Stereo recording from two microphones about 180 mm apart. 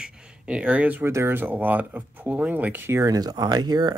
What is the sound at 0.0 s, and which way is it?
Speech, 5° right (ahead or behind).